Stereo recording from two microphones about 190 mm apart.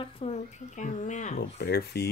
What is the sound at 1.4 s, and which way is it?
Speech, 60° left (ahead or behind).